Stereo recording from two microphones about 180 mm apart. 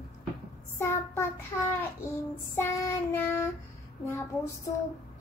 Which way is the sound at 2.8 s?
15° left (ahead or behind).